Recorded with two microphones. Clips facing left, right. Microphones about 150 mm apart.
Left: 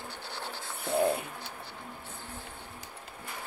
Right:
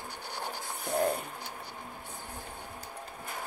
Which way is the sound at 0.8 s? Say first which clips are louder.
Left 2 dB; 15° right (ahead or behind).